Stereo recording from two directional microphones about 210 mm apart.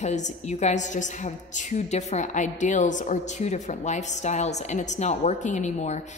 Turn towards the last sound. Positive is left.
turn(degrees=35)  # may be behind; listen again after turning